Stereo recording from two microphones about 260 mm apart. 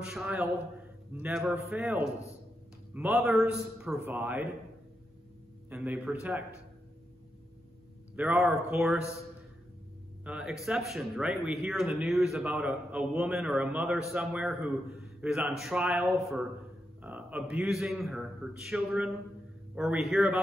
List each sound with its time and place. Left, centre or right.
0.0 s a man's voice: centre
5.7 s speech: centre
8.2 s speech: centre
10.2 s speech: centre